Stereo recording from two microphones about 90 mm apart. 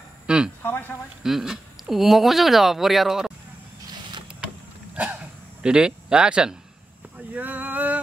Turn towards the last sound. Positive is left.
turn(degrees=-20)  # may be behind; listen again after turning